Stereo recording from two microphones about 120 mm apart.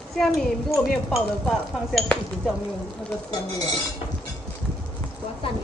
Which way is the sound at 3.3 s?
35° left (ahead or behind).